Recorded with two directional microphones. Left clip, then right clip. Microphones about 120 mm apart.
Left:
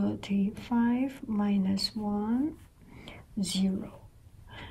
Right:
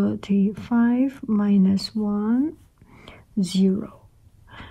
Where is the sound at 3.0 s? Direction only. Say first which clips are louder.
Right 9 dB; 35° right (ahead or behind).